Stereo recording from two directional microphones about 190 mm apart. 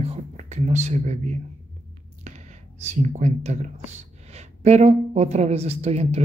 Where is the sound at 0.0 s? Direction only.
35° right (ahead or behind).